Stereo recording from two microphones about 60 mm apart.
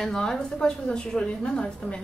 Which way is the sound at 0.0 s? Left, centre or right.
Centre.